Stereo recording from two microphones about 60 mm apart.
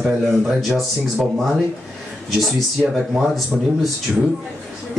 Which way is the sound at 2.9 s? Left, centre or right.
Centre.